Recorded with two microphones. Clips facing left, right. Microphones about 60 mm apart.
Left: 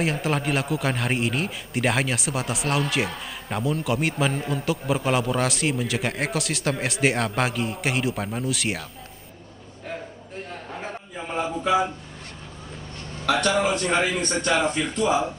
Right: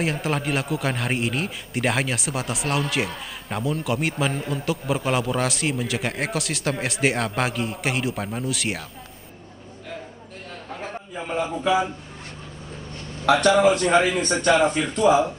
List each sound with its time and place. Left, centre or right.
0.0 s a man's voice: centre
13.2 s a man's voice: right